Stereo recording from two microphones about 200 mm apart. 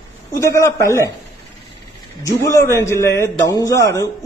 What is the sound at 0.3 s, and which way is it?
Speech, 15° left (ahead or behind).